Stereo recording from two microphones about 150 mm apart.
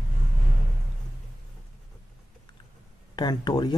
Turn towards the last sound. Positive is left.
turn(degrees=30)  # may be behind; listen again after turning